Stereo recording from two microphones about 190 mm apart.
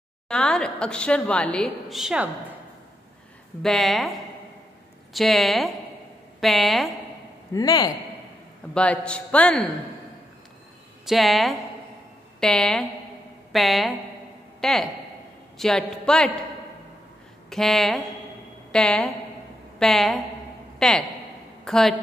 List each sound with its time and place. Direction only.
0.3 s a woman's voice: 5° left (ahead or behind)
3.6 s a woman's voice: centre (ahead or behind)
7.5 s a man's voice: 20° left (ahead or behind)
8.7 s a man's voice: 5° left (ahead or behind)
11.1 s a woman's voice: centre (ahead or behind)
17.5 s a woman's voice: centre (ahead or behind)